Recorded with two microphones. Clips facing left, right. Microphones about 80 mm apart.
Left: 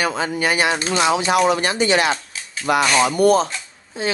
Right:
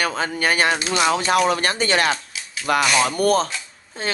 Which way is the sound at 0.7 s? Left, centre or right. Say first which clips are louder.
Left 1 dB; left.